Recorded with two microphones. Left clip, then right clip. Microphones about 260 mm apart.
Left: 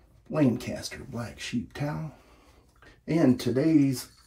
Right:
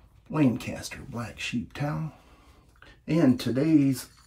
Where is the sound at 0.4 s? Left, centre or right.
Right.